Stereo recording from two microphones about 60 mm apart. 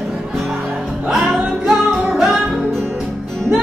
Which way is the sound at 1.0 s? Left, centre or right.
Centre.